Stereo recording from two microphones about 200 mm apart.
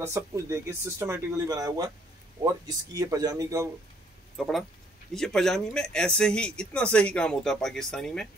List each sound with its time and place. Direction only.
0.0 s speech: 15° right (ahead or behind)
4.4 s speech: centre (ahead or behind)